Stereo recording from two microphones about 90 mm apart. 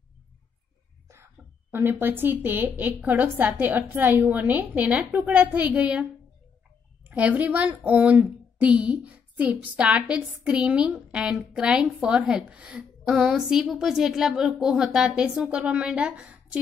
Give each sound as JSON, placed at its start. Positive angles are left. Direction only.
{"t": 1.0, "sound": "a sound", "side_deg": -30}
{"t": 2.8, "sound": "a woman's voice", "side_deg": -15}
{"t": 7.1, "sound": "a woman's voice", "side_deg": -15}